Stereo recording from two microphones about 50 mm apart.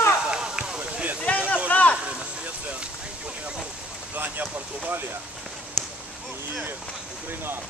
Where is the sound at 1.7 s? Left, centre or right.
Left.